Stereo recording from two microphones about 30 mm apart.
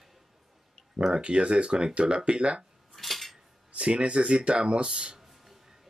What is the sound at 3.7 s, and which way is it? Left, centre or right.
Speech, right.